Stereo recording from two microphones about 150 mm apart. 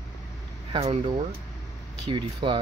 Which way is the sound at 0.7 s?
40° right (ahead or behind).